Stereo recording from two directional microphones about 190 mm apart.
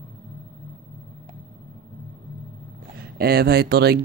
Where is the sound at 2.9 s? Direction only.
55° right (ahead or behind).